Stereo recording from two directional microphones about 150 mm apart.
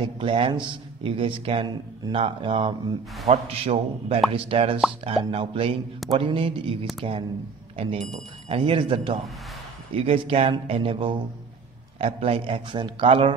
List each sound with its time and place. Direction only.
0.0 s a man's voice: 35° right (ahead or behind)